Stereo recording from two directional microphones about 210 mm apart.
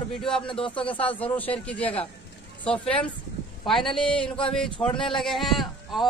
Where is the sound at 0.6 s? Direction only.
25° left (ahead or behind).